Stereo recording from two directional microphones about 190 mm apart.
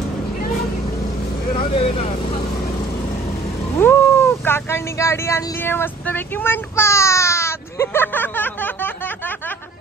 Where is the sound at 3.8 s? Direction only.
10° left (ahead or behind).